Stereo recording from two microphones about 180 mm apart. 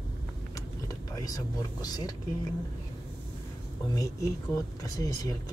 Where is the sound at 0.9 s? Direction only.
20° left (ahead or behind).